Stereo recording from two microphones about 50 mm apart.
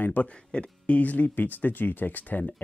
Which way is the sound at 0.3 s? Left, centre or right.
Left.